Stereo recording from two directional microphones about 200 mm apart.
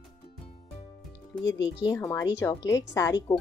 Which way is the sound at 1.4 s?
65° left (ahead or behind).